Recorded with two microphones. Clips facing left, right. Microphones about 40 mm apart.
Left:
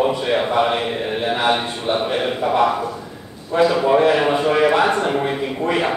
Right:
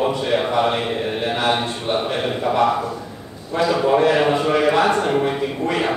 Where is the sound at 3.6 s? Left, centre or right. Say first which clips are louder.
Left 2 dB; centre.